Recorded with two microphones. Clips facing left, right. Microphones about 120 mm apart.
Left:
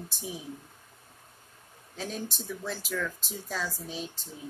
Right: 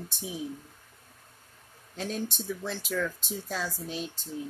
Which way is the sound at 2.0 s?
Centre (ahead or behind).